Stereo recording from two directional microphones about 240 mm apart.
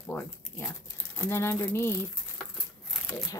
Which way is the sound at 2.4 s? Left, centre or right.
Centre.